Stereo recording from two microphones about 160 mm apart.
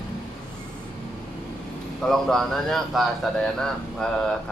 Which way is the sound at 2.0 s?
Centre (ahead or behind).